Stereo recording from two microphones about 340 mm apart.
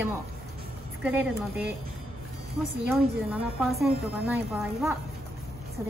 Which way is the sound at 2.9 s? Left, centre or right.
Centre.